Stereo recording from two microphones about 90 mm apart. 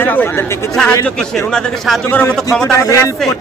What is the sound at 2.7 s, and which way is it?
Speech, 35° left (ahead or behind).